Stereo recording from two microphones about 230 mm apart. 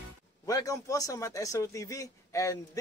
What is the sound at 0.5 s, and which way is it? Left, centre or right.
Speech, centre.